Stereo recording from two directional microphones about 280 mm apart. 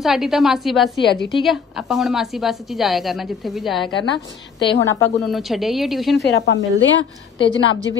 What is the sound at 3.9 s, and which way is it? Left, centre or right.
Speech, centre.